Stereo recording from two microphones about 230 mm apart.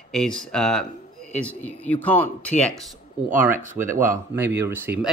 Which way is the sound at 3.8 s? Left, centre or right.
Centre.